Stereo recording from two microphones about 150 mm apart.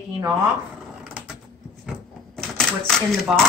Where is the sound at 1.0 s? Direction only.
10° right (ahead or behind).